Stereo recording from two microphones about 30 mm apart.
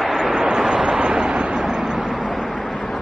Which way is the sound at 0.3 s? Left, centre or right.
Right.